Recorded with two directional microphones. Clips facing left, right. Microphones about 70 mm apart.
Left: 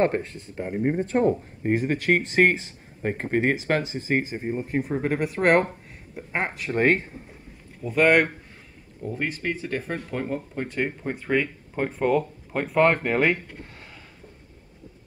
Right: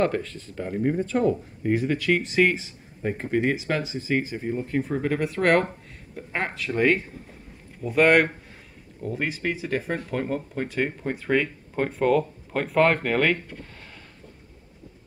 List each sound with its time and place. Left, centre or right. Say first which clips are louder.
0.0 s speech: left 1 dB; left
0.9 s speech: left 3 dB; left
6.7 s speech: left 1 dB; left
7.8 s speech: right 1 dB; centre